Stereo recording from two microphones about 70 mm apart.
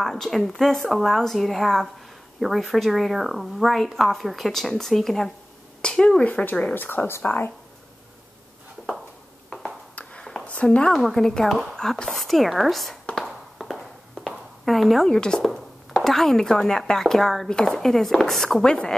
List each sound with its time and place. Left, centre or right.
0.0 s speech: centre
6.7 s speech: left
10.2 s a sound: centre
10.5 s speech: centre
11.0 s speech: centre
13.2 s a sound: centre
15.0 s speech: centre